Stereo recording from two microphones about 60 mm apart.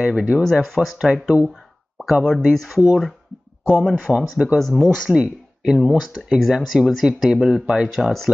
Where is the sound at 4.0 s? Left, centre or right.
Centre.